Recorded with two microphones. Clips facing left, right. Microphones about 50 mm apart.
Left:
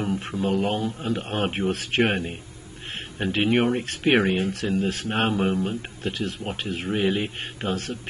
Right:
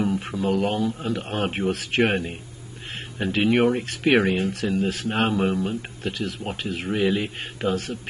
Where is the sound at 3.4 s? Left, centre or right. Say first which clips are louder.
Right 2 dB; centre.